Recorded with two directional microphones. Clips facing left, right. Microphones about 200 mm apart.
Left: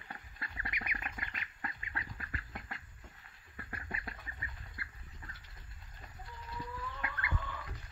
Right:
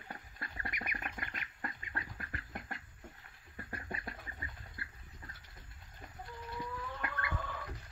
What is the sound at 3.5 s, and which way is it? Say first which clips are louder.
Duck: right 2 dB; 40° right (ahead or behind).